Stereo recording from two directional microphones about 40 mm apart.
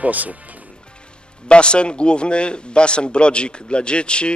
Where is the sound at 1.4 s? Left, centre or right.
Left.